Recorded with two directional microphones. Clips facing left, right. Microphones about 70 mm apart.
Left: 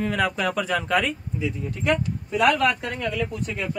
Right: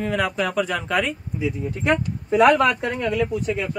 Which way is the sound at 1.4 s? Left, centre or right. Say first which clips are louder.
Right 5 dB; centre.